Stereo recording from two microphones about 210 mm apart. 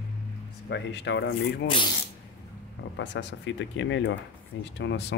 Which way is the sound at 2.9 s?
60° left (ahead or behind).